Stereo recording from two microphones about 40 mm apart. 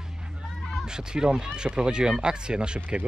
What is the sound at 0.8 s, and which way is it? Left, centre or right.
Speech, centre.